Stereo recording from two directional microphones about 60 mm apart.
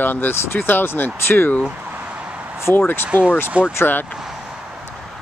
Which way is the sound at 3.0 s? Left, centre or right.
Right.